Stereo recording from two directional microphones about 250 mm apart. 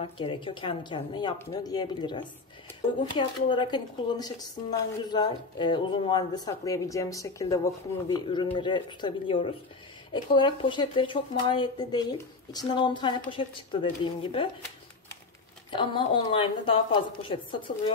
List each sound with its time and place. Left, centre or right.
0.0 s a woman's voice: left
15.7 s a woman's voice: centre